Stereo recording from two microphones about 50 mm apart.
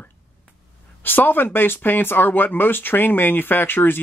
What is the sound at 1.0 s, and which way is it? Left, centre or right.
Speech, left.